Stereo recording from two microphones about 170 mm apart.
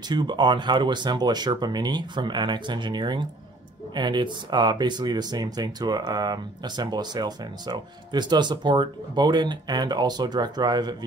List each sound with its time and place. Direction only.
0.1 s speech: 25° right (ahead or behind)